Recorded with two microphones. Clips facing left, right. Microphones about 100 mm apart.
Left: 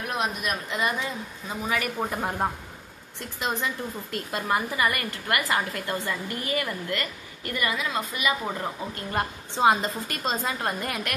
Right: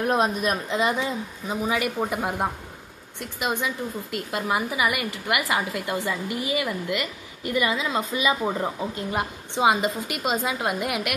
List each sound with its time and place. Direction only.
0.0 s a woman's voice: 35° right (ahead or behind)
9.1 s a woman's voice: 10° right (ahead or behind)